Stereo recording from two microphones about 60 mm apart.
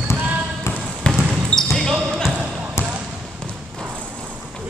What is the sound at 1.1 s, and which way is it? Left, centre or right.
Basketball bounce, centre.